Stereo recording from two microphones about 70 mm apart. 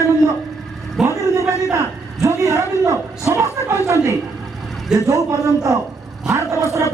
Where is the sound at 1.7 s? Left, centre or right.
Right.